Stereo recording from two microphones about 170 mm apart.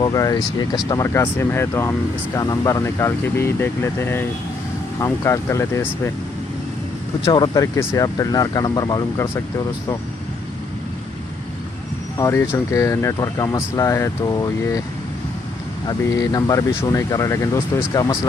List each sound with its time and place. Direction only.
0.0 s speech: 20° left (ahead or behind)
7.2 s speech: 25° left (ahead or behind)
12.2 s speech: 15° left (ahead or behind)
15.9 s speech: 20° left (ahead or behind)